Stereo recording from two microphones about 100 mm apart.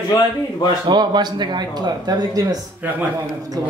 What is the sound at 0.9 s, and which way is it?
A man's voice, 45° right (ahead or behind).